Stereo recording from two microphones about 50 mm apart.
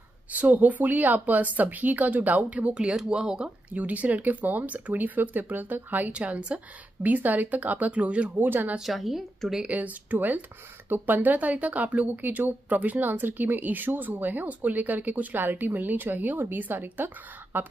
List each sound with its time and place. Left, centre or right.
0.3 s speech: right; by 3.4 s centre
3.4 s speech: right
6.1 s speech: right
8.4 s speech: right
8.7 s a woman's voice: centre
9.7 s speech: right